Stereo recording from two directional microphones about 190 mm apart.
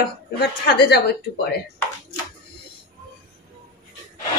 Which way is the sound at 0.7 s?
60° left (ahead or behind).